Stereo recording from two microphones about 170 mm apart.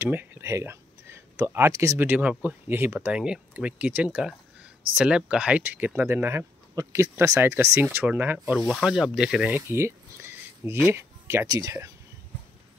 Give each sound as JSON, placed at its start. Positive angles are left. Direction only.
{"t": 0.0, "sound": "speech", "side_deg": -10}
{"t": 9.6, "sound": "a sound", "side_deg": -15}
{"t": 10.9, "sound": "speech", "side_deg": -15}